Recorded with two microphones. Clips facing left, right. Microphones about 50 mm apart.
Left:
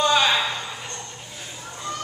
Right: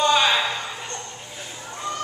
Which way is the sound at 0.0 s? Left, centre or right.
Centre.